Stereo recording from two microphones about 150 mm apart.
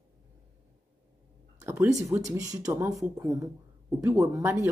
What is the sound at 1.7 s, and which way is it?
A woman's voice, 15° right (ahead or behind).